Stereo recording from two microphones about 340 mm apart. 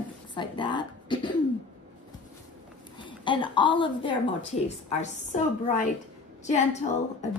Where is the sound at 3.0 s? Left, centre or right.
Centre.